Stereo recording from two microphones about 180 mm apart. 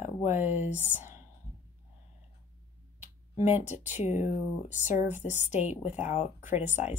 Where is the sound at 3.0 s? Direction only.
40° left (ahead or behind).